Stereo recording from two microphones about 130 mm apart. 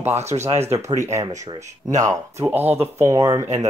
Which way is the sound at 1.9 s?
25° right (ahead or behind).